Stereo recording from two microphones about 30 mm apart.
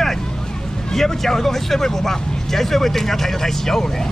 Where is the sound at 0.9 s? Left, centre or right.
Centre.